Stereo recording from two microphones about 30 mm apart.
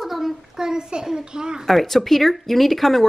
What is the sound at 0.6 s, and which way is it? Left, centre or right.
A child's voice, right.